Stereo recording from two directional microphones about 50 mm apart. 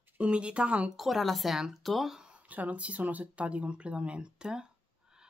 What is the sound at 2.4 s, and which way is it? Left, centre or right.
Speech, right.